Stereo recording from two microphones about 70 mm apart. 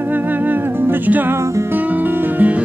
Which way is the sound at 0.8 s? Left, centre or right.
Right.